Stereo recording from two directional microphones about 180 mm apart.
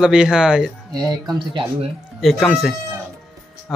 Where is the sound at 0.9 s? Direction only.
20° right (ahead or behind).